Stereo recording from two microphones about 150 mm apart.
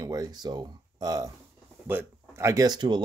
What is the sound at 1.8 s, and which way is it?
Speech, 15° right (ahead or behind).